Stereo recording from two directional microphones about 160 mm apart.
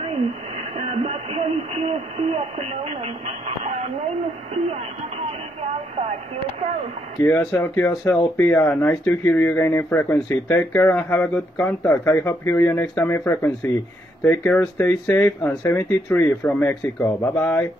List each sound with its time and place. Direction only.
0.0 s speech: 40° right (ahead or behind)
5.9 s speech: 45° right (ahead or behind)
7.2 s speech: 15° left (ahead or behind)